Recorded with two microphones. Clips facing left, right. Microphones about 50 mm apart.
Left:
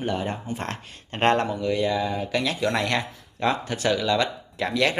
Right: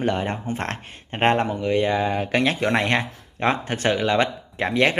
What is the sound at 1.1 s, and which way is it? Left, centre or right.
Speech, right.